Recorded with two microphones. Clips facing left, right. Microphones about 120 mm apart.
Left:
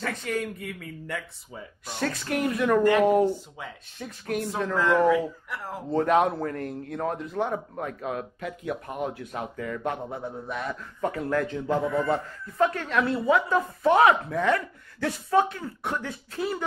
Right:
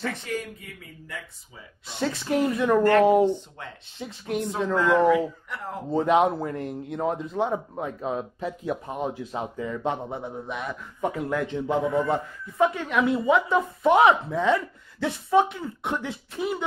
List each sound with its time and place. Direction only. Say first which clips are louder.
0.3 s speech: left 3 dB; 65° left (ahead or behind)
2.0 s speech: right 3 dB; 20° right (ahead or behind)
3.3 s speech: right 2 dB; 5° left (ahead or behind)
4.0 s speech: right 1 dB; 20° right (ahead or behind)
4.7 s speech: right 1 dB; centre (ahead or behind)
6.0 s speech: right 2 dB; 20° right (ahead or behind)